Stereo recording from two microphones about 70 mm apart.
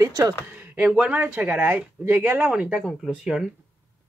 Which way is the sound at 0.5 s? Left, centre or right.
Right.